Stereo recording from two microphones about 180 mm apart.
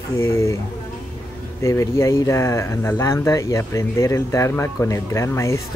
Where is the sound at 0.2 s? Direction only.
15° left (ahead or behind).